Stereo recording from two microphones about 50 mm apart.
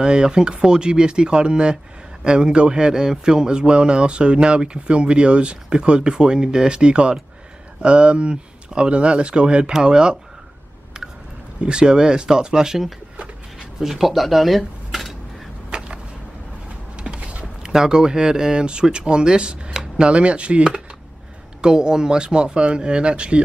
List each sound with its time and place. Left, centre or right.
0.0 s speech: centre
11.6 s speech: centre
15.7 s a sound: centre
17.0 s mechanisms: right
17.6 s speech: centre